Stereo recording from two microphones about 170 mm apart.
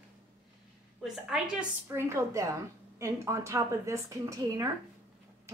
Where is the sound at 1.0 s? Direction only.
5° right (ahead or behind).